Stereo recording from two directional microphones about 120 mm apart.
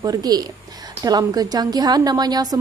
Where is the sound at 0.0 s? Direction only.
30° right (ahead or behind).